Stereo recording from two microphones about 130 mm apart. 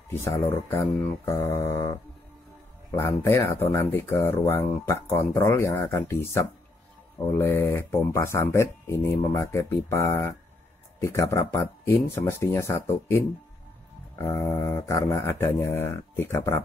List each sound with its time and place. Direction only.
0.1 s speech: 15° left (ahead or behind)